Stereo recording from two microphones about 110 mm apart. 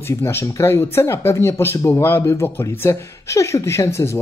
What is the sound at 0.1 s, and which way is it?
Speech, 25° left (ahead or behind).